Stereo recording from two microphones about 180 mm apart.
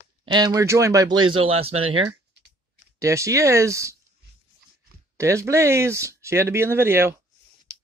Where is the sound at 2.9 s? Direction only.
15° right (ahead or behind).